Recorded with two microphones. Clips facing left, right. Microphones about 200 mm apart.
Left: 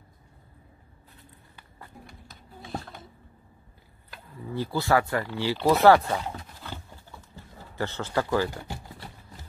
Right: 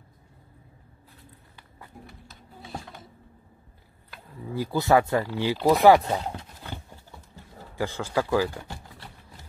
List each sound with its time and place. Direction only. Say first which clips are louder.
2.7 s a sound: left 3 dB; 10° right (ahead or behind)
4.6 s speech: right 3 dB; 20° right (ahead or behind)
7.7 s speech: right 1 dB; 10° right (ahead or behind)